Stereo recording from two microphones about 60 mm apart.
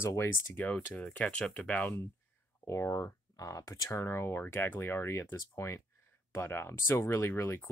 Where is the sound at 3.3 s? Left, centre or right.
Left.